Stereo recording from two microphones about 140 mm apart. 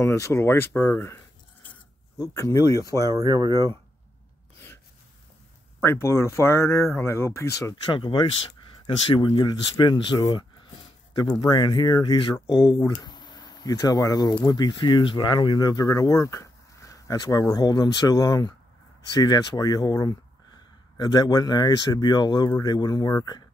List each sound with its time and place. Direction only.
0.0 s speech: 20° left (ahead or behind)
2.3 s speech: 20° left (ahead or behind)
3.0 s speech: 25° right (ahead or behind)
5.8 s speech: 20° left (ahead or behind)
7.7 s speech: 35° left (ahead or behind)